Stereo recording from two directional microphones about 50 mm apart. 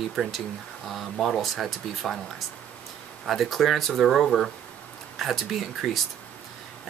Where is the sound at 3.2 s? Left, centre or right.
Centre.